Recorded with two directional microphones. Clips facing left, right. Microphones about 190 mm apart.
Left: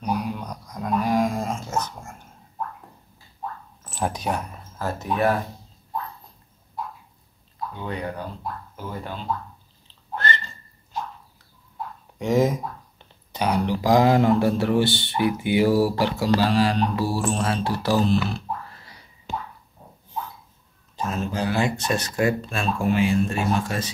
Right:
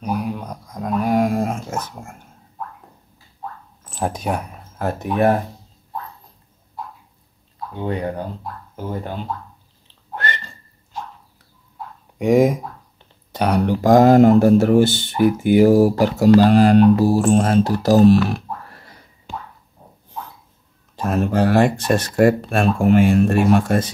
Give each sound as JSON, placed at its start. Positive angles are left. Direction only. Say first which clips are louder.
{"t": 0.1, "sound": "dog", "louder": "right 3 dB", "side_deg": -55}
{"t": 3.9, "sound": "a sound", "louder": "right 3 dB", "side_deg": -50}
{"t": 7.8, "sound": "speech", "louder": "right 7 dB", "side_deg": -40}
{"t": 12.2, "sound": "speech", "louder": "right 6 dB", "side_deg": -60}
{"t": 18.3, "sound": "music", "louder": "right 3 dB", "side_deg": -55}
{"t": 21.0, "sound": "speech", "louder": "right 8 dB", "side_deg": -60}